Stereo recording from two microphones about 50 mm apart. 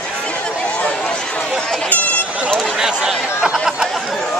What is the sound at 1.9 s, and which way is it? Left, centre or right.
Air horn, left.